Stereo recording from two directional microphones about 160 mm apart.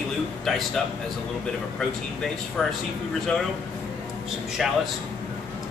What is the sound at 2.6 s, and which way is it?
Speech, centre (ahead or behind).